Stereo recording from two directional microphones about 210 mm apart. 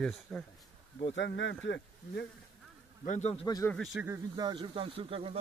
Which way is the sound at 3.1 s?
30° left (ahead or behind).